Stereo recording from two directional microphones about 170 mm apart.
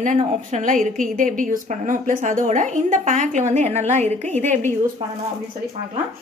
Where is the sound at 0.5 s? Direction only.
50° right (ahead or behind).